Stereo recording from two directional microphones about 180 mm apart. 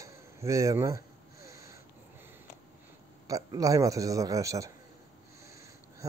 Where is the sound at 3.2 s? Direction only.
20° right (ahead or behind).